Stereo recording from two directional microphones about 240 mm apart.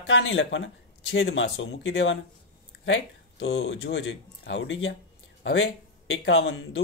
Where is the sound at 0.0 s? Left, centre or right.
Left.